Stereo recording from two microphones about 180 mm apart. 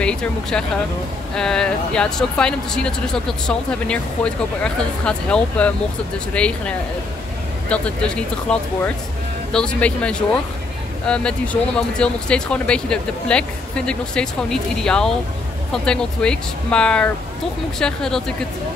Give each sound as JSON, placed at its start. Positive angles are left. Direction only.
{"t": 0.0, "sound": "speech", "side_deg": 5}
{"t": 7.7, "sound": "speech", "side_deg": 5}